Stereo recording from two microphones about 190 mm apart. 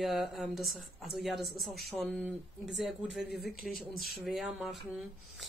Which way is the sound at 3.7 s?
50° left (ahead or behind).